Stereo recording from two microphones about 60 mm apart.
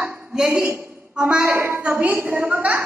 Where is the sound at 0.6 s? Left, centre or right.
Right.